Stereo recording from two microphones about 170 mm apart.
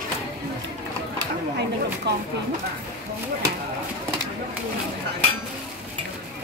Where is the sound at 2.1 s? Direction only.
90° right.